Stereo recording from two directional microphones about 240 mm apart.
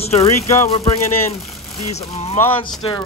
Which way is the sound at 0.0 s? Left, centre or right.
Left.